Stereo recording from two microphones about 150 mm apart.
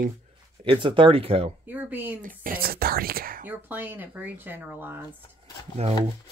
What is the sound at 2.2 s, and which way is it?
Speech, 70° right (ahead or behind).